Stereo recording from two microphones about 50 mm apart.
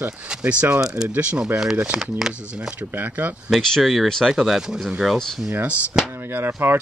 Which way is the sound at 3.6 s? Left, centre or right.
Centre.